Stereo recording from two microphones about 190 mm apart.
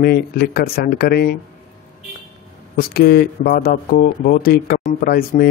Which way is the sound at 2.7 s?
55° left (ahead or behind).